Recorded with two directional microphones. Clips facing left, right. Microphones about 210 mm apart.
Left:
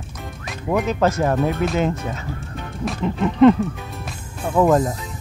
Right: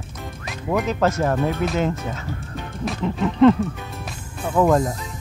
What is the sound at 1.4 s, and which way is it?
Music, centre (ahead or behind).